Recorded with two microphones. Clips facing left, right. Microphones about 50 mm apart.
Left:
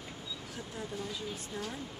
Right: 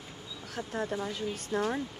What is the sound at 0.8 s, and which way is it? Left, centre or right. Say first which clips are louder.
Speech: right 7 dB; right.